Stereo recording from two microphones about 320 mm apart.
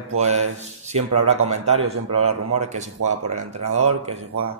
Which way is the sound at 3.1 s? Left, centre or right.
Right.